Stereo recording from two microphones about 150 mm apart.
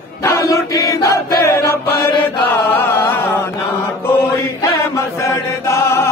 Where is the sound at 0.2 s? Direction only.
20° left (ahead or behind).